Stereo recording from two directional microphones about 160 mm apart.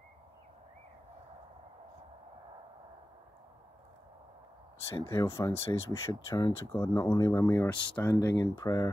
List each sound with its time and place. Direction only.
4.8 s speech: 15° left (ahead or behind)